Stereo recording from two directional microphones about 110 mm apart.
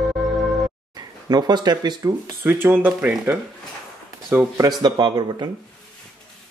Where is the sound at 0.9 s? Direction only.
40° right (ahead or behind).